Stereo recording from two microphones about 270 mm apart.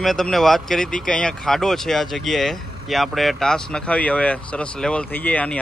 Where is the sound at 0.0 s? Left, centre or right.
Centre.